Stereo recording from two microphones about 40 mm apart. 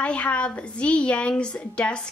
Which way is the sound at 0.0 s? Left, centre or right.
Left.